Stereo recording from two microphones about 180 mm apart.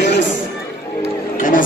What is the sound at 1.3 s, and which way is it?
Music, 50° left (ahead or behind).